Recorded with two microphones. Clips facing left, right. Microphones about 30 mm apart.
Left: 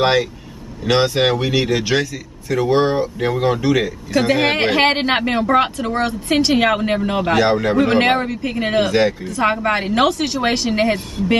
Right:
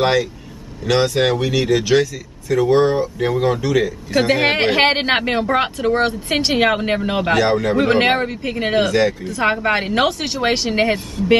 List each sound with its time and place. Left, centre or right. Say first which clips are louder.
0.0 s speech: left 1 dB; centre
3.2 s speech: even; centre
4.1 s speech: even; centre
7.3 s speech: left 1 dB; centre
7.7 s speech: right 1 dB; centre
8.8 s speech: left 1 dB; centre
9.2 s speech: even; centre